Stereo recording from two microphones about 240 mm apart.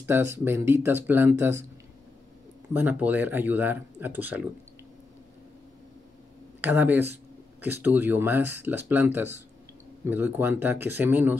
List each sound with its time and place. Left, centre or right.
0.0 s speech: centre
2.7 s speech: centre
6.6 s speech: centre